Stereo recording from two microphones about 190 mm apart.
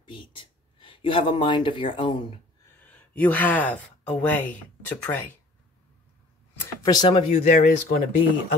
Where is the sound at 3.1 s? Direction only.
10° left (ahead or behind).